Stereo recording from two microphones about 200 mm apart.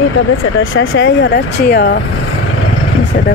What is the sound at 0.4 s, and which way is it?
Speech, 75° left (ahead or behind).